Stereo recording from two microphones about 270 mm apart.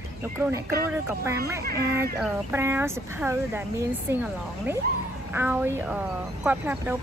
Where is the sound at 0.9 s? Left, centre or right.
Centre.